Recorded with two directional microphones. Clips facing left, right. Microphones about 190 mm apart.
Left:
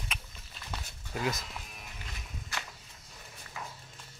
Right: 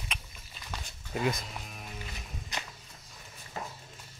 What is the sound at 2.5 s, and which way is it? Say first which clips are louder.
Walk: right 1 dB; 20° right (ahead or behind).